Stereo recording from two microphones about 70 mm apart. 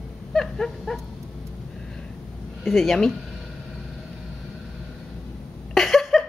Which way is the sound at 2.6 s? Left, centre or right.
Centre.